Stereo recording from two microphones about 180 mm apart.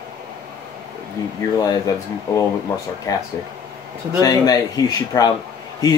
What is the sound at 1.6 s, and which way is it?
Speech, 20° left (ahead or behind).